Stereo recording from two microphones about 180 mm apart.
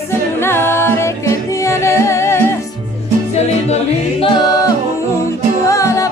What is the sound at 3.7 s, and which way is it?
A capella, 30° left (ahead or behind).